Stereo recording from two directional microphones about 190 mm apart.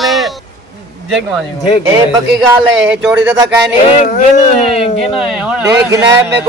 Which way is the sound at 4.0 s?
35° left (ahead or behind).